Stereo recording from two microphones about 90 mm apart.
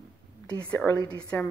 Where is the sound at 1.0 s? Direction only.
10° left (ahead or behind).